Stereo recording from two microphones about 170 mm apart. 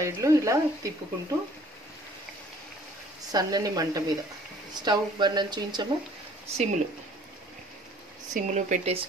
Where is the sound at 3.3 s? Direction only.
20° right (ahead or behind).